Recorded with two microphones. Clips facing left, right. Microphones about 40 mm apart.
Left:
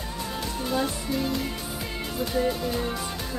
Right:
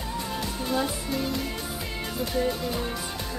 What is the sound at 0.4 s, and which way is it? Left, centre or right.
Music, centre.